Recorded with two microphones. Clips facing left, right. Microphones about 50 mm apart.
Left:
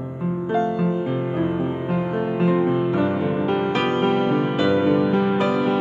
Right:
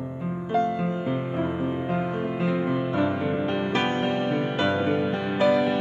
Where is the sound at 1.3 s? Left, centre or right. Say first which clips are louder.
Left 4 dB; left.